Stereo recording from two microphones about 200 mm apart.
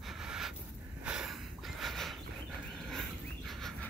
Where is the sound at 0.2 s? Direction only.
5° right (ahead or behind).